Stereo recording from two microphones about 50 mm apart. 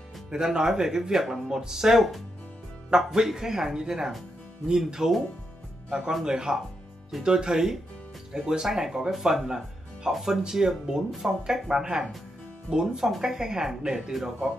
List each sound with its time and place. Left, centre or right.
0.3 s speech: centre